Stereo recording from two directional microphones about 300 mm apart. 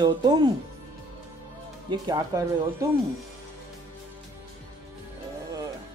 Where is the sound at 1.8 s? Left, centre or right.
Centre.